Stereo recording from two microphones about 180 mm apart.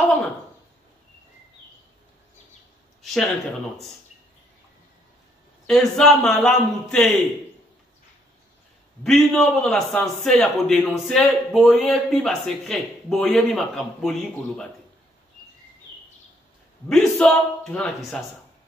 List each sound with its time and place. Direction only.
3.0 s a sound: centre (ahead or behind)
5.7 s a man's voice: centre (ahead or behind)
9.0 s a man's voice: 5° left (ahead or behind)
16.9 s a man's voice: 5° left (ahead or behind)